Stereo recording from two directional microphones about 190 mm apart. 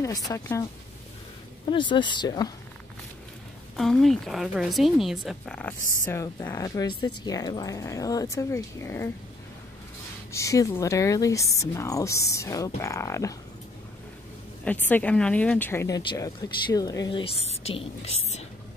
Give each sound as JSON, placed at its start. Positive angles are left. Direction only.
{"t": 0.0, "sound": "a woman's voice", "side_deg": 20}
{"t": 1.7, "sound": "a woman's voice", "side_deg": 25}
{"t": 3.7, "sound": "a woman's voice", "side_deg": 0}
{"t": 10.3, "sound": "a woman's voice", "side_deg": 15}
{"t": 14.6, "sound": "a woman's voice", "side_deg": 10}
{"t": 16.0, "sound": "a woman's voice", "side_deg": 25}